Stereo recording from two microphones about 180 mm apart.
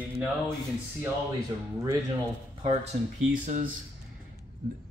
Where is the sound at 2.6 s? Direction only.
35° right (ahead or behind).